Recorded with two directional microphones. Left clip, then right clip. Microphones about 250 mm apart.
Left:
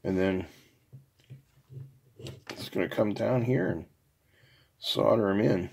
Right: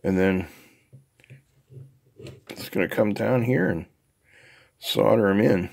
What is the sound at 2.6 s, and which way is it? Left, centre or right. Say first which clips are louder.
Speech: right 5 dB; right.